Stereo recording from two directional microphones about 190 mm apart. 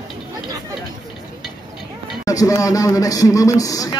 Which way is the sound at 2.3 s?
15° left (ahead or behind).